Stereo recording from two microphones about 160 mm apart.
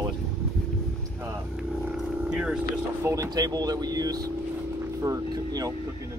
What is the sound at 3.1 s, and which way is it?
Speech, 20° right (ahead or behind).